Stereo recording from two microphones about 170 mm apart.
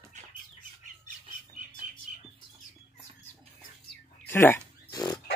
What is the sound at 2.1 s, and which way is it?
Bird, 50° right (ahead or behind).